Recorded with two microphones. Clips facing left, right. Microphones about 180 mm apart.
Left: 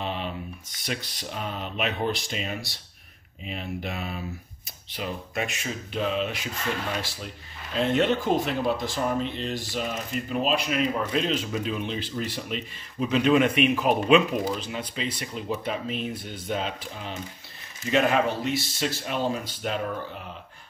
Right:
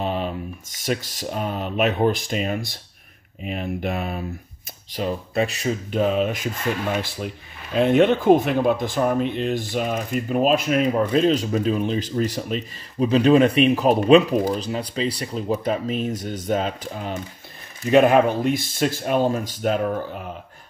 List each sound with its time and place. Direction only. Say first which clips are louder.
0.0 s a sound: right 6 dB; 45° right (ahead or behind)
0.7 s speech: right 8 dB; 45° right (ahead or behind)
4.9 s speech: right 8 dB; 35° right (ahead or behind)